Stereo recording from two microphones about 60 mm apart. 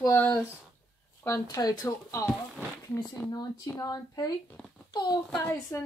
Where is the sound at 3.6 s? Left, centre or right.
Left.